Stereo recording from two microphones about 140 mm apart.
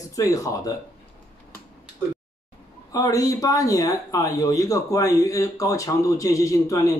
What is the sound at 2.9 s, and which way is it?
Speech, 25° left (ahead or behind).